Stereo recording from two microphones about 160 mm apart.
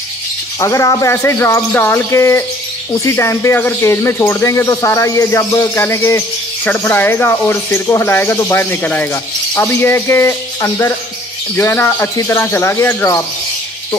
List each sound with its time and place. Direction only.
0.6 s speech: 20° left (ahead or behind)